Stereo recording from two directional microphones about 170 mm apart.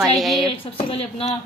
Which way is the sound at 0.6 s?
35° left (ahead or behind).